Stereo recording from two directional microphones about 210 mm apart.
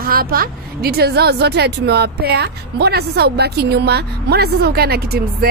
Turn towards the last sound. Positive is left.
turn(degrees=-45)  # may be behind; listen again after turning